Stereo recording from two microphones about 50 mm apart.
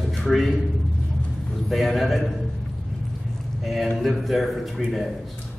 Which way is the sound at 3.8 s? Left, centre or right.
Centre.